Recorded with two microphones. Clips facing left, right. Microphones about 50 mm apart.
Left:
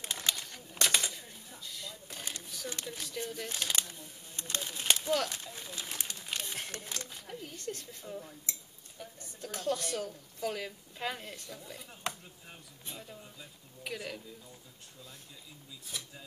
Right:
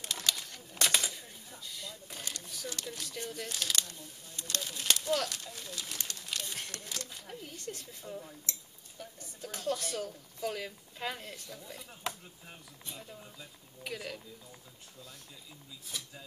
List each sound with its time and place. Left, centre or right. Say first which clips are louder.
0.0 s bird: even; centre
0.4 s a sound: even; centre
2.7 s speech: left 1 dB; centre
3.5 s speech: right 1 dB; centre
5.9 s crumpling: left 1 dB; centre
7.2 s speech: left 2 dB; centre
15.9 s speech: even; centre